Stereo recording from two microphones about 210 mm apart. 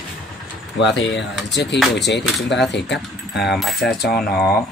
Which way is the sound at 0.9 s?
55° left (ahead or behind).